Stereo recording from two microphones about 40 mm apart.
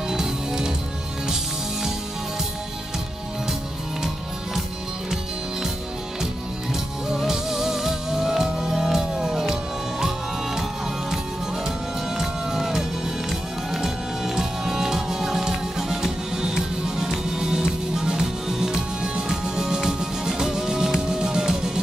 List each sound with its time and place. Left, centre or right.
0.1 s music: centre
6.7 s music: centre
12.2 s music: centre